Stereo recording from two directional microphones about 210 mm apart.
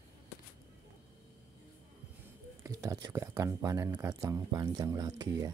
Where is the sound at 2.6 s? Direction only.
15° right (ahead or behind).